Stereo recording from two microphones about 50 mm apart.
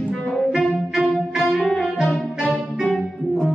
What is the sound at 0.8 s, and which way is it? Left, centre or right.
Music, centre.